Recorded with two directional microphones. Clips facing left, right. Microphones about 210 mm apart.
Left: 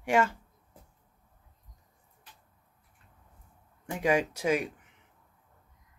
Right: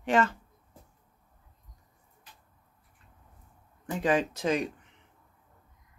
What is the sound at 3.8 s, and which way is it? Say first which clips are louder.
Speech: even; 10° left (ahead or behind).